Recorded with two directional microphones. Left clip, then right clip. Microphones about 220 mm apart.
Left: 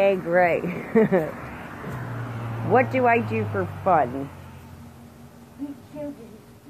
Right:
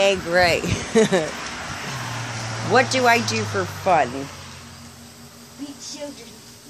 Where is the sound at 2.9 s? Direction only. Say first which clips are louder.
Right 3 dB; 20° right (ahead or behind).